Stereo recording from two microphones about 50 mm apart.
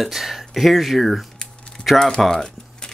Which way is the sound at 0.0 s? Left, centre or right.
Centre.